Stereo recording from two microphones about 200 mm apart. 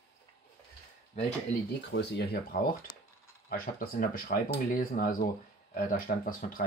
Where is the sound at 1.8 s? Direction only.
55° left (ahead or behind).